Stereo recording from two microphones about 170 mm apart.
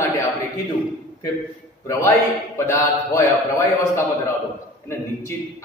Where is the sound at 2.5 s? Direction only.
15° left (ahead or behind).